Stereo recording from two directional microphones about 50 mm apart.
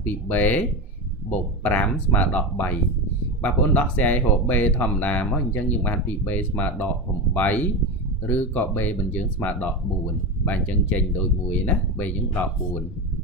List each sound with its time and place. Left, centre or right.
0.0 s speech: left
1.6 s speech: left